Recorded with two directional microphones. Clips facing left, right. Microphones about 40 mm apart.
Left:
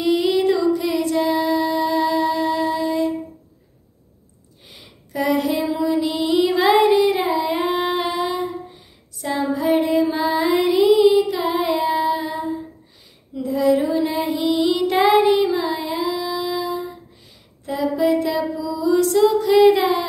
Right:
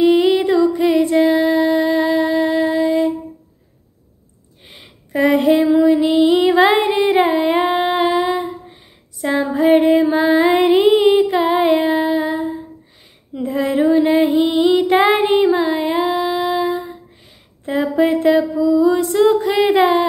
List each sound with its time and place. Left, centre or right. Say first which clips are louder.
0.0 s music: right 5 dB; right
4.6 s female singing: right 3 dB; right
7.6 s female singing: right 5 dB; right
17.6 s a sound: right 3 dB; right
19.2 s female singing: left 2 dB; right